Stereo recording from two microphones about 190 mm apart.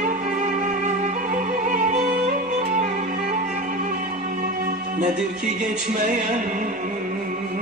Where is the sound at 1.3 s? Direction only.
40° right (ahead or behind).